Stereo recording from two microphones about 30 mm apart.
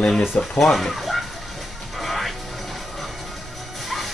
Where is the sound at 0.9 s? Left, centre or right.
Centre.